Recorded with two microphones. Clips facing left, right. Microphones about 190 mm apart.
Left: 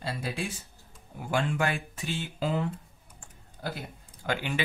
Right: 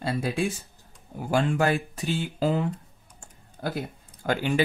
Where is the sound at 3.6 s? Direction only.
50° right (ahead or behind).